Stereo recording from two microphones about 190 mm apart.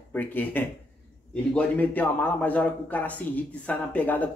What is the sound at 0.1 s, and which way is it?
A man's voice, 10° left (ahead or behind).